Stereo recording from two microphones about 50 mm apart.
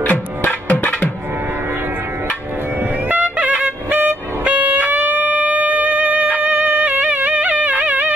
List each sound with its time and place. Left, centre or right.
0.1 s music: left
3.1 s wind instrument: right